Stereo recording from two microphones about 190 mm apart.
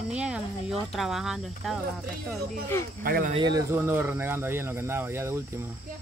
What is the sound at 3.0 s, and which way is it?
Speech, 50° right (ahead or behind).